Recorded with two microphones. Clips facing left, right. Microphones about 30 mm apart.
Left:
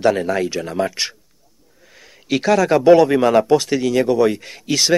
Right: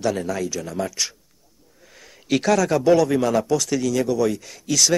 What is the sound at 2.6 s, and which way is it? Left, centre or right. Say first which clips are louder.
Speech: left 6 dB; left.